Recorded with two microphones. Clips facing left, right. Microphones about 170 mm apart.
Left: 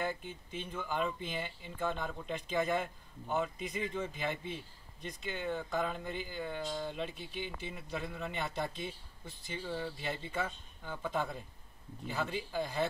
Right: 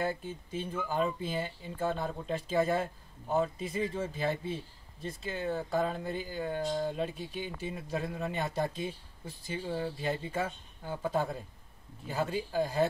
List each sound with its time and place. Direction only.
0.0 s speech: 40° right (ahead or behind)